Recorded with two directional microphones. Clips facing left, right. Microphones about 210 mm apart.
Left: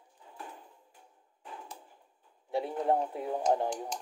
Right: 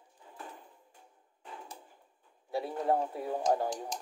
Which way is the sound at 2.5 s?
20° left (ahead or behind).